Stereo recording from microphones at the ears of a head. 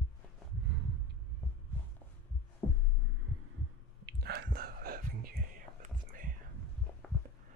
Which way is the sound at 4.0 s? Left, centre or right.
Right.